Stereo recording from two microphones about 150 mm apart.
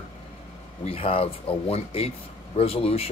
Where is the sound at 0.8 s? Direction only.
40° left (ahead or behind).